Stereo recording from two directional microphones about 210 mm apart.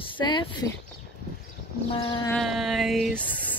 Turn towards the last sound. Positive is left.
turn(degrees=5)  # may be behind; listen again after turning